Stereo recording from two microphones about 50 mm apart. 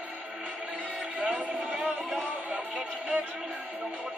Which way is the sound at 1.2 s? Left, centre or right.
Right.